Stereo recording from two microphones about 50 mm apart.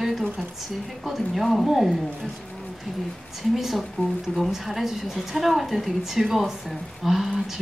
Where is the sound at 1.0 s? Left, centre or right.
Centre.